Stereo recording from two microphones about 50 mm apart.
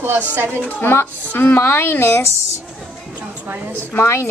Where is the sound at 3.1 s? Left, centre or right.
Right.